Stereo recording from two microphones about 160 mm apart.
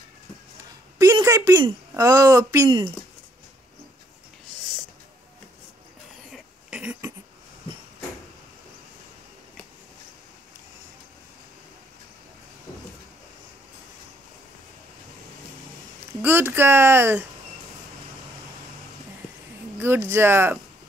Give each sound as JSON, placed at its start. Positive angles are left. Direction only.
{"t": 0.9, "sound": "a woman's voice", "side_deg": -20}
{"t": 6.3, "sound": "a sound", "side_deg": -10}
{"t": 16.2, "sound": "speech", "side_deg": -15}
{"t": 20.1, "sound": "speech", "side_deg": -15}